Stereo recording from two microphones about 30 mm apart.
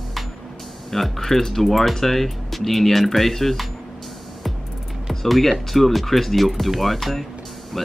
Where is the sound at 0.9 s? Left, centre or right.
Centre.